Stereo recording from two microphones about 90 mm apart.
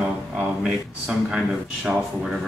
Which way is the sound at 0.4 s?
10° right (ahead or behind).